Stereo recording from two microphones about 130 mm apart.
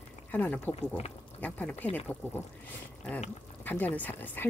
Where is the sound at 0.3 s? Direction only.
15° left (ahead or behind).